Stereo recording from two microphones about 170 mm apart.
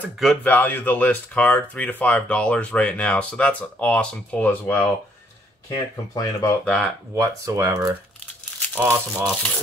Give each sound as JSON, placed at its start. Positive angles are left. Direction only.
{"t": 0.2, "sound": "speech", "side_deg": 5}
{"t": 5.7, "sound": "speech", "side_deg": 20}
{"t": 6.6, "sound": "speech", "side_deg": 5}
{"t": 7.2, "sound": "speech", "side_deg": -20}
{"t": 8.6, "sound": "speech", "side_deg": 10}